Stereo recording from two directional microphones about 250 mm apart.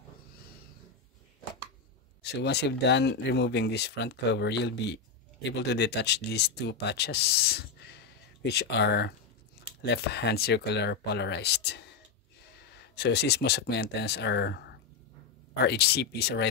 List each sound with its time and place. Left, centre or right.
2.2 s speech: left